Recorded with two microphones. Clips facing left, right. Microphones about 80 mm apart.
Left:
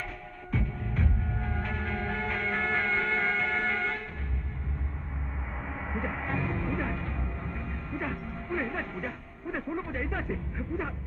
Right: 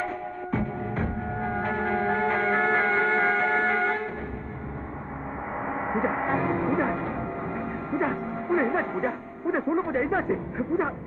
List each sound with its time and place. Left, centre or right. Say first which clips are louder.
0.5 s music: right 4 dB; right
5.7 s music: right 8 dB; right